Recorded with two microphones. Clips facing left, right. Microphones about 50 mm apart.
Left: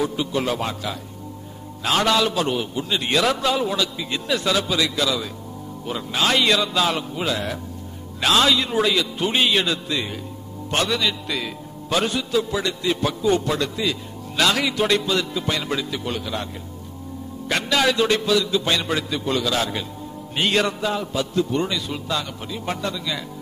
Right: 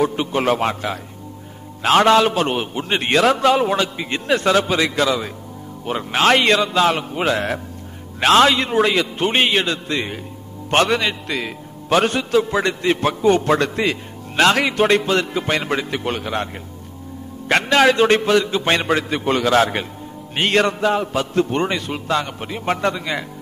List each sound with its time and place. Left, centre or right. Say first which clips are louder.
0.0 s a man's voice: right 4 dB; right
7.0 s a man's voice: right 5 dB; right
8.2 s a man's voice: right 5 dB; right
9.5 s a man's voice: right 2 dB; right
10.7 s a man's voice: right 5 dB; right
11.9 s a man's voice: right 5 dB; right
17.5 s a man's voice: right 6 dB; right
20.3 s a man's voice: right 4 dB; right